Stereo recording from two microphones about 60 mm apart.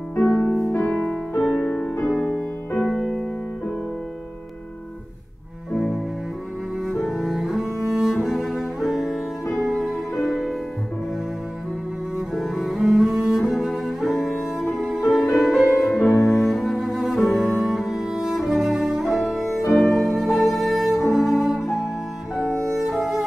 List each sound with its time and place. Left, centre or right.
0.2 s music: left
0.7 s music: centre
2.8 s music: centre
5.7 s cello: centre
12.2 s cello: centre
19.7 s music: centre